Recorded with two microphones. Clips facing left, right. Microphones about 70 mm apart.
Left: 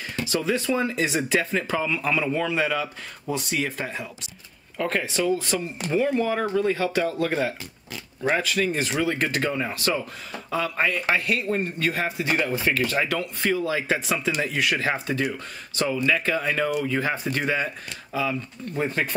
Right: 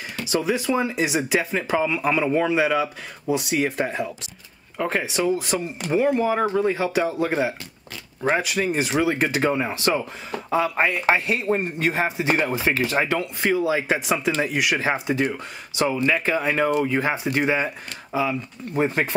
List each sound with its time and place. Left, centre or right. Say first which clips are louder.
0.2 s speech: right 2 dB; centre
3.7 s speech: right 7 dB; right
4.7 s speech: right 1 dB; centre
15.9 s speech: even; right